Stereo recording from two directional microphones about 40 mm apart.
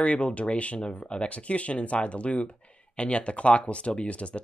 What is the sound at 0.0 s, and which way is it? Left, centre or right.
Speech, left.